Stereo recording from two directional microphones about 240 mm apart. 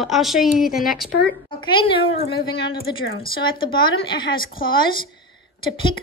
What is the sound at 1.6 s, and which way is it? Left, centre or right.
Speech, left.